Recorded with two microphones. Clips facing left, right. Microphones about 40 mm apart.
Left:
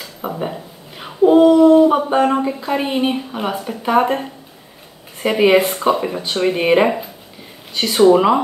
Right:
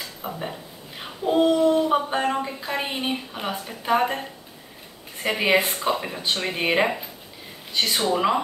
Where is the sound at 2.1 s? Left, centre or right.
Left.